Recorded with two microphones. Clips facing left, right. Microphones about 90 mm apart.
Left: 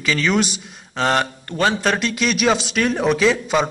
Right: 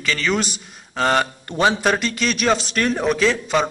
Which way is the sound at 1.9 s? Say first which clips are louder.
Left 1 dB; centre (ahead or behind).